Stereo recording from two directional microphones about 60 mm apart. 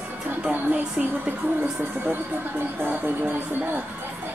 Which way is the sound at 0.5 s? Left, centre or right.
Right.